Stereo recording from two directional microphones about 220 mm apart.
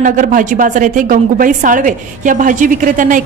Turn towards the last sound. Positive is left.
turn(degrees=-35)  # may be behind; listen again after turning